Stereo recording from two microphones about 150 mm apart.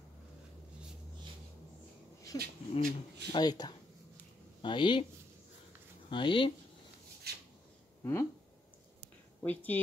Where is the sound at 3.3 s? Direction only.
25° left (ahead or behind).